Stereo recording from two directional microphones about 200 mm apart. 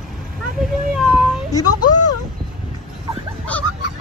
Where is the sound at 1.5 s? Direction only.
20° left (ahead or behind).